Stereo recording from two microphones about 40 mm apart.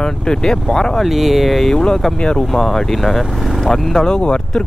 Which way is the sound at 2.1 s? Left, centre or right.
Left.